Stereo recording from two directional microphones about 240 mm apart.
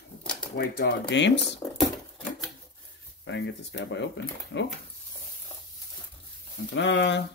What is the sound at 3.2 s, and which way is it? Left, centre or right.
Speech, left.